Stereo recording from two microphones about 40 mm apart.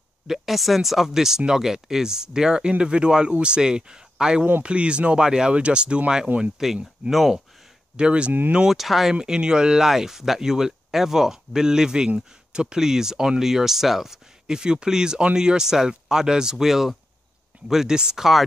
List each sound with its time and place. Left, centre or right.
0.3 s speech: centre; by 6.2 s right
6.2 s speech: right
7.1 s speech: centre
7.9 s speech: right
8.6 s speech: centre
9.1 s speech: right
9.8 s speech: centre